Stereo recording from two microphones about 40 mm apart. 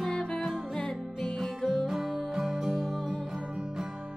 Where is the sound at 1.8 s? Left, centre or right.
Centre.